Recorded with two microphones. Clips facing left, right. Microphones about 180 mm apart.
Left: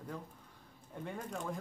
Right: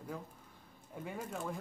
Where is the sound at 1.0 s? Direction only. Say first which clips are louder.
Even; 5° right (ahead or behind).